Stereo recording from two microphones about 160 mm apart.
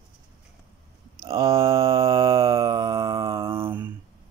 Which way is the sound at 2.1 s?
20° right (ahead or behind).